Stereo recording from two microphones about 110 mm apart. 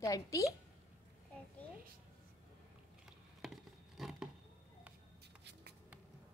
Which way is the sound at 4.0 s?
5° right (ahead or behind).